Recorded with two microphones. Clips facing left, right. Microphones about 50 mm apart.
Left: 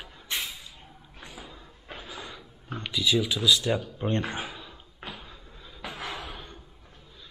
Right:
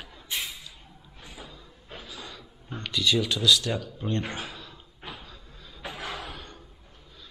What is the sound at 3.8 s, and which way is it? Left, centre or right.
Speech, left.